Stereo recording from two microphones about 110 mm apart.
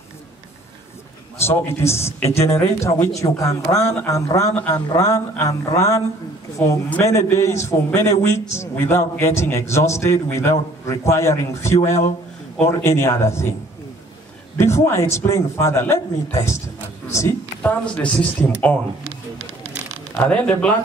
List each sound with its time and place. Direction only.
1.4 s a man's voice: 25° left (ahead or behind)
14.6 s a man's voice: 25° left (ahead or behind)
17.6 s a man's voice: 15° left (ahead or behind)
20.2 s a man's voice: 10° left (ahead or behind)